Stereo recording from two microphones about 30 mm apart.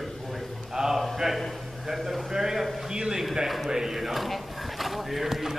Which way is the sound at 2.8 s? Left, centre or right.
Centre.